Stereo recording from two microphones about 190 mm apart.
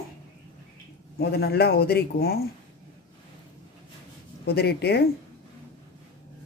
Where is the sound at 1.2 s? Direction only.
55° left (ahead or behind).